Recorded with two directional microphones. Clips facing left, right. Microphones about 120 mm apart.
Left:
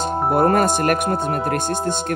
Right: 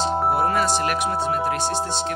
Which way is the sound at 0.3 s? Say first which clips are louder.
Left 9 dB; 50° left (ahead or behind).